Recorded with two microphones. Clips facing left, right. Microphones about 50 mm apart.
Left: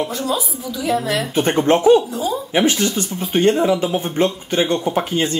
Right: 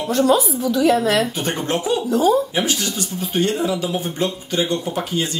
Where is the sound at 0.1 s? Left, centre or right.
Right.